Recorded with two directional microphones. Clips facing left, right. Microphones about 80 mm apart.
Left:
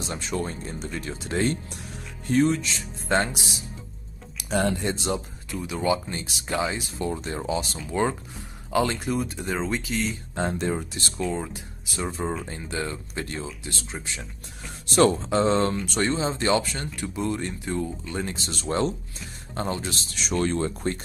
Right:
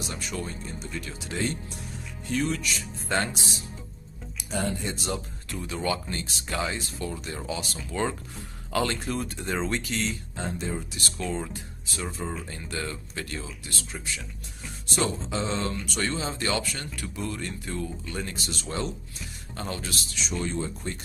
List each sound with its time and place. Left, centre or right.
0.0 s speech: left
0.6 s speech: left
4.4 s speech: left
4.9 s speech: left
5.5 s speech: centre
10.3 s speech: left
11.0 s speech: left
11.2 s speech: centre
12.0 s speech: left
15.0 s speech: left
18.5 s speech: left
20.2 s speech: left